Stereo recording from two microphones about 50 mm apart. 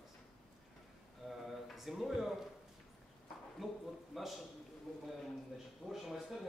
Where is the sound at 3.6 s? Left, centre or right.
Centre.